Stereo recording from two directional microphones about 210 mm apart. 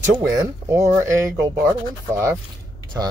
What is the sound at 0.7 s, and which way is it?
Speech, 15° right (ahead or behind).